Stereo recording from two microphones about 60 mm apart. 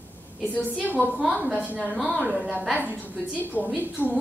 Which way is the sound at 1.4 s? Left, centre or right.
Left.